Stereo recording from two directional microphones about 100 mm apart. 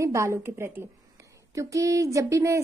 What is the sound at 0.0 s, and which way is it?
A woman's voice, 30° right (ahead or behind).